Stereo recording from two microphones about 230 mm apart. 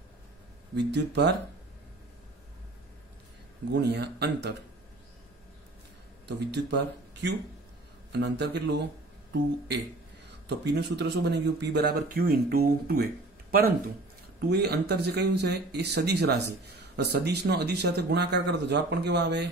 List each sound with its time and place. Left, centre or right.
0.7 s speech: right
3.7 s speech: right
6.2 s speech: right
10.6 s speech: right
14.4 s speech: right